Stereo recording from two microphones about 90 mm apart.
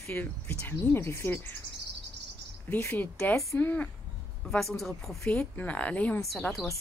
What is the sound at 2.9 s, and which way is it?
Speech, 15° left (ahead or behind).